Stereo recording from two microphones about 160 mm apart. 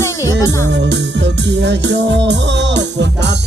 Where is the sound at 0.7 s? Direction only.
90° right.